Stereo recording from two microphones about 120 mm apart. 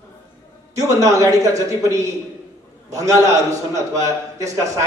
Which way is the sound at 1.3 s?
25° right (ahead or behind).